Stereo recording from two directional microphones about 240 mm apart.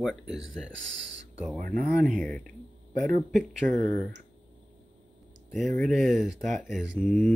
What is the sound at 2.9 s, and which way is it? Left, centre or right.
Speech, right.